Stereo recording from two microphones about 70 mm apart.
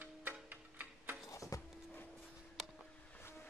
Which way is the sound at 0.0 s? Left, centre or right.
Right.